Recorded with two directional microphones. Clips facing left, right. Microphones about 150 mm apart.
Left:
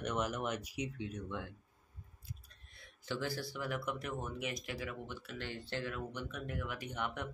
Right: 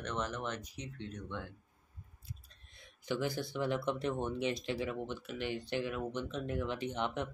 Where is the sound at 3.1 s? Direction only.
20° right (ahead or behind).